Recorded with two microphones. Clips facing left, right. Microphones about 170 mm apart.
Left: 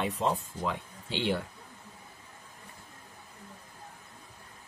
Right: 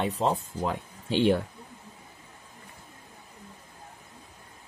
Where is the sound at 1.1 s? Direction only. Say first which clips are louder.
Right 8 dB; 50° right (ahead or behind).